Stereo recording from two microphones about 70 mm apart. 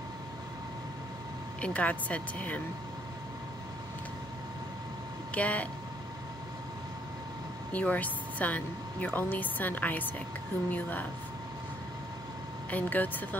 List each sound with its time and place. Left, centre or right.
1.6 s speech: left
5.3 s speech: centre
7.7 s speech: left
12.7 s speech: left